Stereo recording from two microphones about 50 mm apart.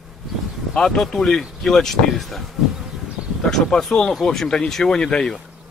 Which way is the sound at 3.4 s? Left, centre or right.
Centre.